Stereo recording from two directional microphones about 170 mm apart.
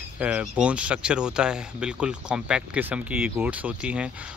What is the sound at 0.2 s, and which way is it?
Speech, 5° right (ahead or behind).